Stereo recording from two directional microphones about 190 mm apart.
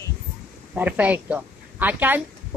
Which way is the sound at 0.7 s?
10° right (ahead or behind).